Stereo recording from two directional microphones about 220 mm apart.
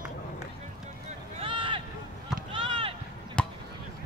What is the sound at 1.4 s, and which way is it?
Run, 25° right (ahead or behind).